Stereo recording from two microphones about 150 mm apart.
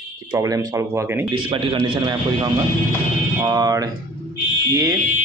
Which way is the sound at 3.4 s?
25° right (ahead or behind).